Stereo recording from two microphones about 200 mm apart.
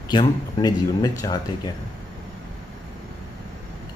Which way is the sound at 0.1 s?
20° left (ahead or behind).